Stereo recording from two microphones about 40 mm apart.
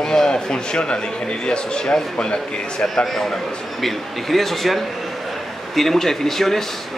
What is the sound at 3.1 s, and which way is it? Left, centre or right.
Speech, centre.